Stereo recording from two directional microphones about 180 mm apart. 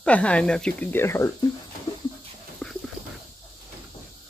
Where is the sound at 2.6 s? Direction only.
5° left (ahead or behind).